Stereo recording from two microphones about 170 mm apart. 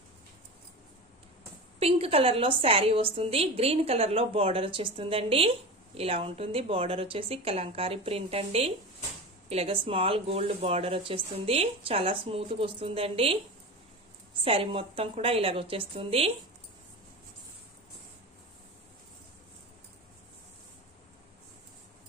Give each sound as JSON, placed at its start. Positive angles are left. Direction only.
{"t": 1.8, "sound": "speech", "side_deg": -35}
{"t": 14.4, "sound": "speech", "side_deg": -35}